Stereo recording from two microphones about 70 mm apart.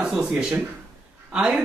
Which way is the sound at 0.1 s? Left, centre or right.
Centre.